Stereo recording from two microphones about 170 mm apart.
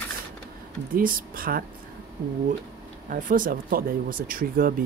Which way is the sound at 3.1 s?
50° right (ahead or behind).